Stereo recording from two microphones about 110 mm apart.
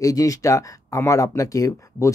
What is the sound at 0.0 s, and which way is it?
Speech, 30° left (ahead or behind).